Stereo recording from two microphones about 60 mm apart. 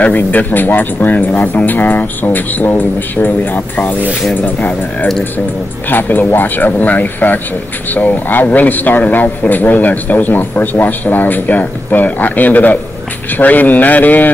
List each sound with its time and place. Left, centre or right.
0.0 s speech: left
5.9 s speech: left